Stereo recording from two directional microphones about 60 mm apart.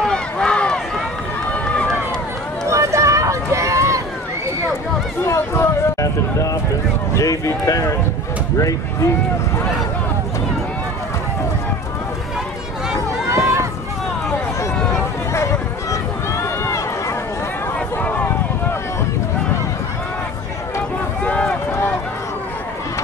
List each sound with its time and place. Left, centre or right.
0.1 s run: centre
2.7 s run: right
5.2 s a sound: left
5.9 s speech: left
13.3 s run: right
15.3 s run: left
17.7 s a sound: left
21.2 s run: left